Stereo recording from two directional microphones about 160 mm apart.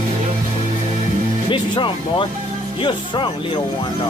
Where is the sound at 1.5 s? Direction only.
30° left (ahead or behind).